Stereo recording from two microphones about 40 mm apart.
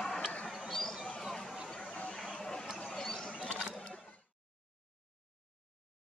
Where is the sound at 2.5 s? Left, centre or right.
Centre.